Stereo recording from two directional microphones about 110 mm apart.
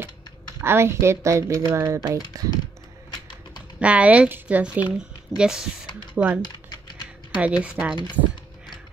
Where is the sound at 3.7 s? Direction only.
10° right (ahead or behind).